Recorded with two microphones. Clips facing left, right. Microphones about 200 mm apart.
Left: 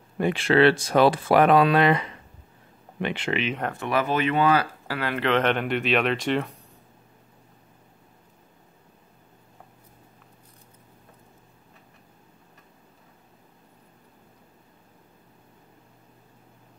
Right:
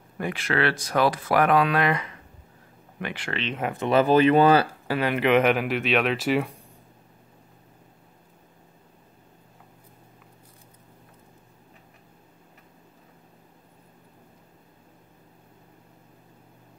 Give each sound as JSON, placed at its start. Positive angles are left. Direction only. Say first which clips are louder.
{"t": 0.2, "sound": "speech", "louder": "left 7 dB", "side_deg": 25}
{"t": 3.7, "sound": "speech", "louder": "right 8 dB", "side_deg": -25}
{"t": 4.8, "sound": "speech", "louder": "right 3 dB", "side_deg": -20}